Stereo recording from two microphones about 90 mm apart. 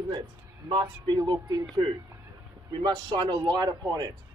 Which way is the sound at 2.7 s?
55° right (ahead or behind).